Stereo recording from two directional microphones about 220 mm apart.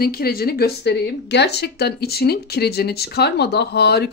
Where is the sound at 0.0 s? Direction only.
45° left (ahead or behind).